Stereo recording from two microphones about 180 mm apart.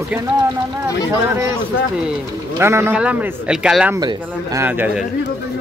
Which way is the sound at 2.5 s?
15° right (ahead or behind).